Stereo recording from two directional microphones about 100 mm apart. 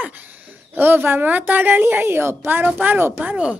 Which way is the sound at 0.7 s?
20° right (ahead or behind).